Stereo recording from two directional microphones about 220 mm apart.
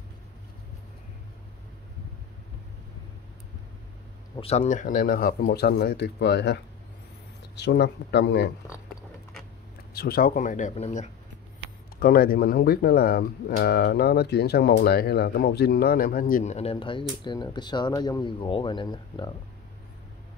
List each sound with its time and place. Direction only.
4.4 s speech: 30° left (ahead or behind); by 8.5 s 50° left (ahead or behind)
9.9 s speech: 45° left (ahead or behind)
12.0 s speech: 40° left (ahead or behind); by 19.3 s 20° left (ahead or behind)